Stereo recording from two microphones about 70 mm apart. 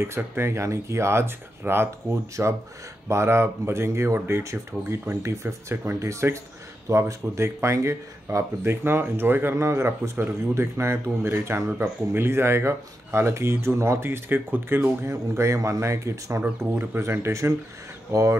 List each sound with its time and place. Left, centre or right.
0.0 s speech: right
3.1 s speech: right